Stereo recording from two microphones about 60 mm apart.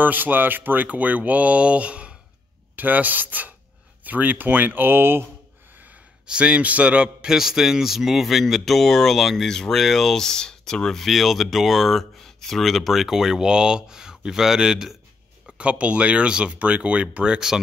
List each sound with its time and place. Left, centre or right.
0.0 s speech: right
6.2 s a man's voice: centre
15.4 s speech: centre